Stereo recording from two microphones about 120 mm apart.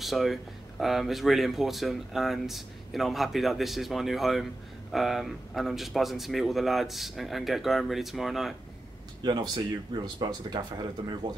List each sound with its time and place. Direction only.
0.0 s speech: centre (ahead or behind)
9.2 s speech: 35° right (ahead or behind)